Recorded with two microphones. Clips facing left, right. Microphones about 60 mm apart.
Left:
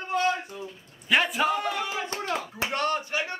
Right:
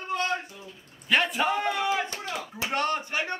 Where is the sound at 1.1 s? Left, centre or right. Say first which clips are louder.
Left 1 dB; centre.